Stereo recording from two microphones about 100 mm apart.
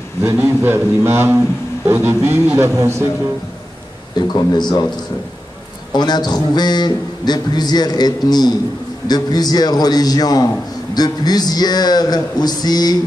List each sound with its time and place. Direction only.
0.4 s a man's voice: 20° right (ahead or behind)
4.3 s a man's voice: 45° left (ahead or behind)
5.9 s a man's voice: 45° left (ahead or behind)